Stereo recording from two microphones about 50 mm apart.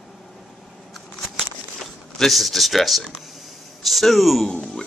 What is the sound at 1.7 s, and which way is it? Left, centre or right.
Speech, centre.